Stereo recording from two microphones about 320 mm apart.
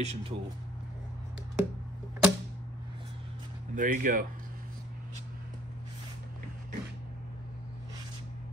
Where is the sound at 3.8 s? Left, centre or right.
Right.